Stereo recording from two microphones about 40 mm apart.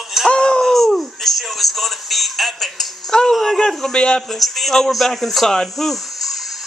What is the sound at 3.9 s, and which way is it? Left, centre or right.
Speech, left.